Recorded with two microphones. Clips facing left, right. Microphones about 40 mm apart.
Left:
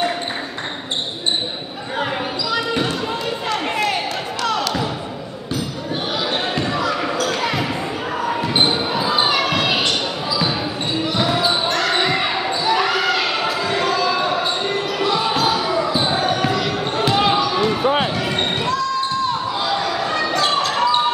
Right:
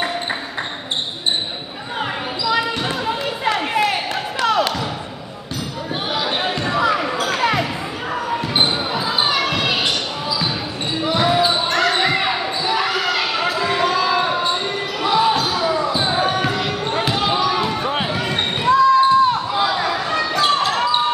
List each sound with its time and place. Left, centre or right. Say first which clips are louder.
3.1 s a sound: right 2 dB; centre
6.1 s basketball bounce: right 1 dB; centre
8.3 s basketball bounce: left 1 dB; centre
11.1 s basketball bounce: right 3 dB; centre
15.0 s basketball bounce: right 4 dB; centre
18.7 s basketball bounce: right 8 dB; centre